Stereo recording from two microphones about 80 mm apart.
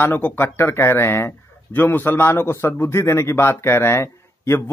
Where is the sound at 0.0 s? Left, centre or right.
Left.